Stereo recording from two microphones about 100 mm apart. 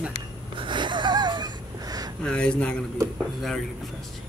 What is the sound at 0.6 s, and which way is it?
Wheeze, 50° right (ahead or behind).